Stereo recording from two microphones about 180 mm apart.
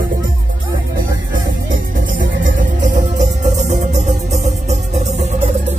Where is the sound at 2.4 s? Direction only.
45° right (ahead or behind).